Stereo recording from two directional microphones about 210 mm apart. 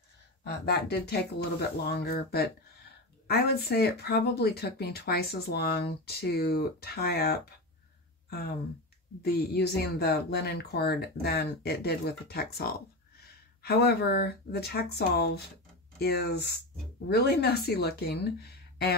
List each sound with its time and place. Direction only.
0.4 s speech: 50° left (ahead or behind)
9.2 s speech: 50° left (ahead or behind)